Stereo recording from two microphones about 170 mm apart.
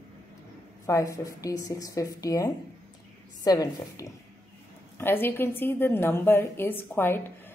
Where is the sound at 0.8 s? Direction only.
20° left (ahead or behind).